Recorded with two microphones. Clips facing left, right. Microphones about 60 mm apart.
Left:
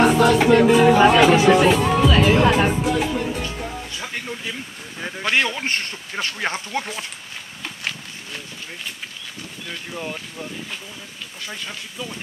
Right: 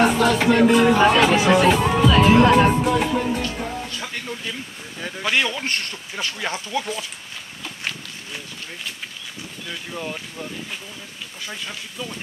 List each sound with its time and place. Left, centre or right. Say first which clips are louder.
0.0 s speech: left 2 dB; centre
3.7 s a sound: right 1 dB; centre
5.4 s speech: left 1 dB; centre
9.7 s speech: even; centre